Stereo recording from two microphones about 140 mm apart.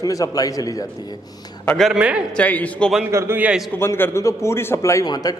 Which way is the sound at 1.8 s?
5° right (ahead or behind).